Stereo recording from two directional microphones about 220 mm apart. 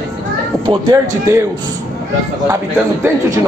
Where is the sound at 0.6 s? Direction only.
15° right (ahead or behind).